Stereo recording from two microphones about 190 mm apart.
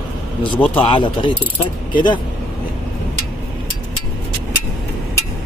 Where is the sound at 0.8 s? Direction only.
25° left (ahead or behind).